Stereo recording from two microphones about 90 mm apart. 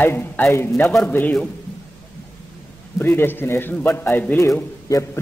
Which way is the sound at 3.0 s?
25° left (ahead or behind).